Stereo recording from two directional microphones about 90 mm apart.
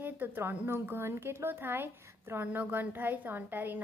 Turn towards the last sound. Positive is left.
turn(degrees=-20)  # may be behind; listen again after turning